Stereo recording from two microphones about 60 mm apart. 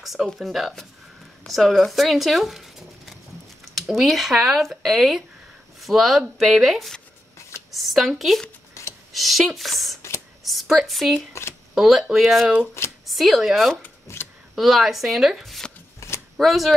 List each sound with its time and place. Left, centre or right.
0.0 s a sound: centre
0.4 s speech: centre
8.8 s a sound: left
9.1 s speech: centre
11.4 s speech: left
11.7 s speech: centre
14.1 s speech: left
14.5 s speech: centre
16.0 s shuffling cards: left
16.3 s speech: centre